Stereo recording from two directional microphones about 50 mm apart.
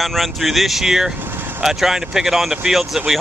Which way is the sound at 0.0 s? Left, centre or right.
Centre.